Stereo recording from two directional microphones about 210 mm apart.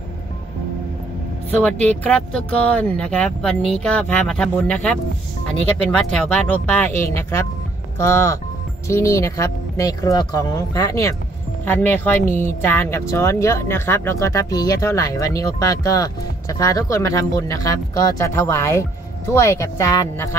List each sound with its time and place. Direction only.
1.6 s speech: 5° left (ahead or behind)
6.1 s speech: 5° left (ahead or behind)